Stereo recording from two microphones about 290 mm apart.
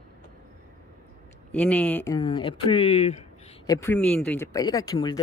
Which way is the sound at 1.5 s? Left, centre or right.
Centre.